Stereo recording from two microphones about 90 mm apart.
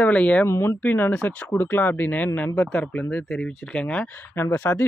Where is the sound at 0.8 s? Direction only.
15° left (ahead or behind).